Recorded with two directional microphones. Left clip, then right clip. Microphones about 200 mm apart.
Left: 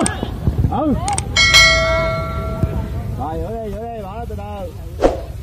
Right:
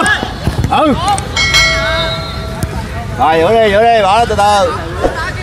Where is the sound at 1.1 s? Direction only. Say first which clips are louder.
Right 2 dB; centre (ahead or behind).